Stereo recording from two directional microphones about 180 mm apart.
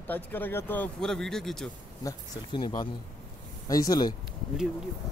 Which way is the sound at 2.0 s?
20° left (ahead or behind).